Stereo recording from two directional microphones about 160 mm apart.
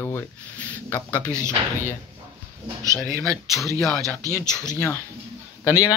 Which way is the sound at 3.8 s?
Centre (ahead or behind).